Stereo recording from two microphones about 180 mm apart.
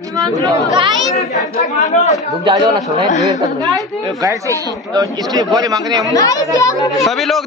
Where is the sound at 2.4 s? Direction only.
25° right (ahead or behind).